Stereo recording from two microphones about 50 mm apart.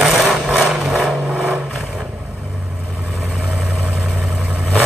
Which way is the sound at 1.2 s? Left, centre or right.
Right.